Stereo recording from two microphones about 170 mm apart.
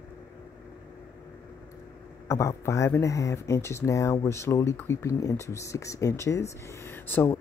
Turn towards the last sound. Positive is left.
turn(degrees=10)  # may be behind; listen again after turning